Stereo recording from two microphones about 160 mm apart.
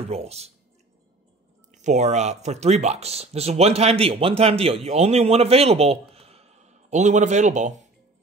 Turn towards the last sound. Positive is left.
turn(degrees=-50)  # may be behind; listen again after turning